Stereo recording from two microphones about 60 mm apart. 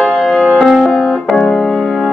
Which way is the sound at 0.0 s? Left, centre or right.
Centre.